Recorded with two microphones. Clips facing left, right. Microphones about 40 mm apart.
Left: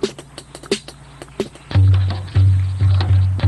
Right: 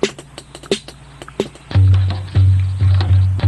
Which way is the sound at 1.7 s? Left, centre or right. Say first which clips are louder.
Left 2 dB; centre.